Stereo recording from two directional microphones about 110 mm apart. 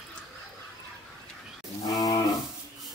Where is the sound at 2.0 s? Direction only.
35° left (ahead or behind).